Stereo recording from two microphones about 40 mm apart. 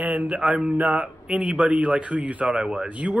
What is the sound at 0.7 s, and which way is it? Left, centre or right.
Speech, right.